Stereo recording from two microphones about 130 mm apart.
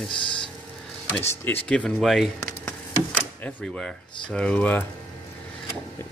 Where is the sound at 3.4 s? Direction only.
10° left (ahead or behind).